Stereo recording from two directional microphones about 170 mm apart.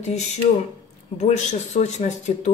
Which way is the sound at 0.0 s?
40° left (ahead or behind).